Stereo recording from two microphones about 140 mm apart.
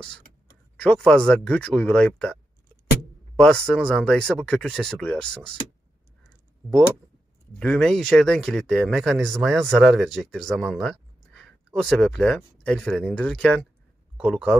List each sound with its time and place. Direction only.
0.7 s speech: 5° left (ahead or behind)
3.3 s speech: 5° left (ahead or behind)
7.5 s speech: 5° left (ahead or behind)